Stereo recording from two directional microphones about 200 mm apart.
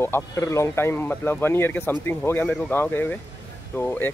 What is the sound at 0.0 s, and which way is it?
Speech, 15° left (ahead or behind).